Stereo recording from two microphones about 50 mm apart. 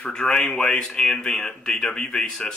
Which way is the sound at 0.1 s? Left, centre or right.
Centre.